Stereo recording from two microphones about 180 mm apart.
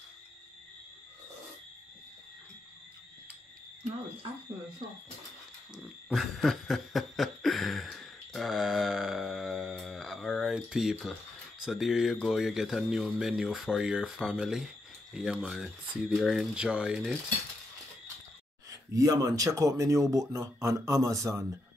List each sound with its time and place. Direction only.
5.8 s snicker: centre (ahead or behind)
11.6 s speech: centre (ahead or behind)
18.9 s speech: 20° right (ahead or behind)